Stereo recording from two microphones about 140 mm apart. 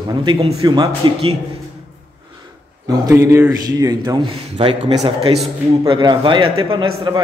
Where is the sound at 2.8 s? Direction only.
25° right (ahead or behind).